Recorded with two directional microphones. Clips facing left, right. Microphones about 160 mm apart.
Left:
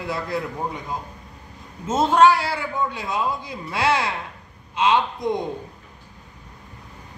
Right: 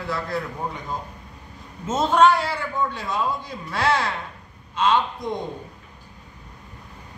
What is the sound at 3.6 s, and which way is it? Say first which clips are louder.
Speech: left 1 dB; 15° left (ahead or behind).